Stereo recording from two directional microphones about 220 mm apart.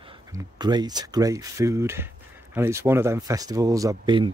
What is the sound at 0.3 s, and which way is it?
Speech, 20° right (ahead or behind).